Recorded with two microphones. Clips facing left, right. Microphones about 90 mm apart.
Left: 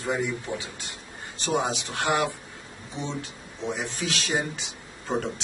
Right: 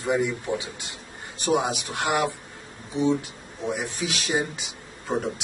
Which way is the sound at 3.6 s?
15° right (ahead or behind).